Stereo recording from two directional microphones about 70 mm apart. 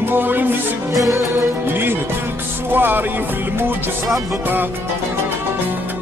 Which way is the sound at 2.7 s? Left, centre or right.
Right.